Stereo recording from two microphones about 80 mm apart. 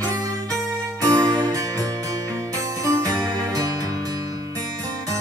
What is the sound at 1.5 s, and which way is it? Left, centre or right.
Music, right.